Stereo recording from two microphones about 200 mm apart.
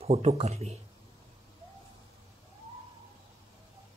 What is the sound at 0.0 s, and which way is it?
Speech, 30° right (ahead or behind).